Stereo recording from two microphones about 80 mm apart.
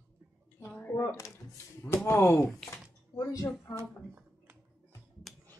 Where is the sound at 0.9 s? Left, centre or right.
Left.